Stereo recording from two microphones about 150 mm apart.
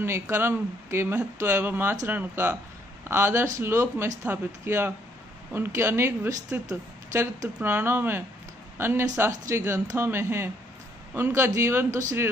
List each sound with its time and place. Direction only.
0.0 s speech: 15° right (ahead or behind)